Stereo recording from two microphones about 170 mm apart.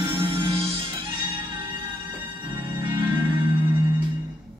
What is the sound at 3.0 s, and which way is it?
Music, 20° right (ahead or behind).